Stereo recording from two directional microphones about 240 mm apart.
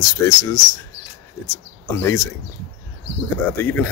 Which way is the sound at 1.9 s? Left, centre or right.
Centre.